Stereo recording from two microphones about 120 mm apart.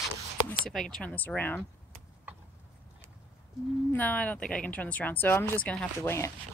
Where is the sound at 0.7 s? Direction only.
5° left (ahead or behind).